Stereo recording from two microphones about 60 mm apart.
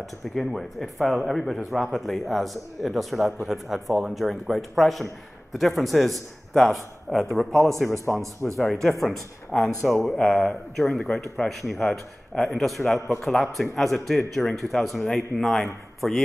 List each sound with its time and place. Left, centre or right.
0.2 s speech: centre
8.1 s speech: left
8.5 s speech: centre
9.5 s speech: centre
10.0 s speech: centre